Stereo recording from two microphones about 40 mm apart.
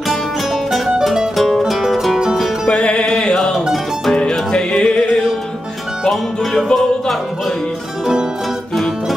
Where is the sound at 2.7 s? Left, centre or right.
Left.